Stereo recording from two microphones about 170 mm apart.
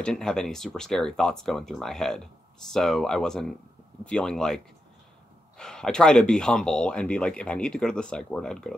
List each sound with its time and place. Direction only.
0.0 s speech: 5° left (ahead or behind)
5.6 s speech: 5° left (ahead or behind)